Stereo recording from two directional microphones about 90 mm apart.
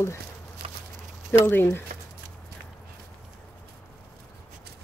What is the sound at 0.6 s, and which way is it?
Walk, 90° right.